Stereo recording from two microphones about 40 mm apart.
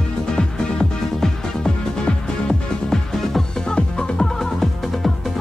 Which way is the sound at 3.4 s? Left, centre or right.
Centre.